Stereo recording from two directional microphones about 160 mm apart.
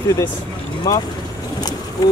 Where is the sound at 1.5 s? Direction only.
25° left (ahead or behind).